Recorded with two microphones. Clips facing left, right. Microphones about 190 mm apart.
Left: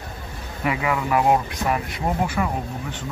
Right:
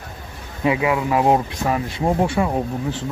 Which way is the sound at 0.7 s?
15° right (ahead or behind).